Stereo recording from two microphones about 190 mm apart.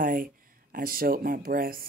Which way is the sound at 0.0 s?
45° right (ahead or behind).